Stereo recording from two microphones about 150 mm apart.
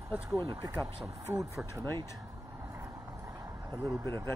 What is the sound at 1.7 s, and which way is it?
Speech, 15° left (ahead or behind).